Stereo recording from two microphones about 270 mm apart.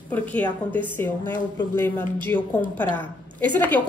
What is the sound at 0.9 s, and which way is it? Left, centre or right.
A woman's voice, centre.